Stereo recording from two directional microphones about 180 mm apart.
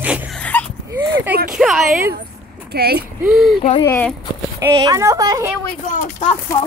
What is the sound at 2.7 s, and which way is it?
Speech, 60° right (ahead or behind).